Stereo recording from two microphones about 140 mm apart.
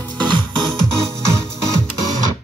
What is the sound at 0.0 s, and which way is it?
Music, 30° right (ahead or behind).